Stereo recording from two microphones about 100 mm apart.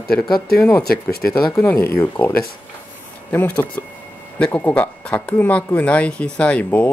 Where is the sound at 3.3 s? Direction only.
20° left (ahead or behind).